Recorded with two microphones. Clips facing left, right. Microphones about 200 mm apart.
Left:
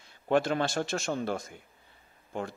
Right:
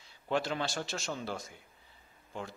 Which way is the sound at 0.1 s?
50° left (ahead or behind).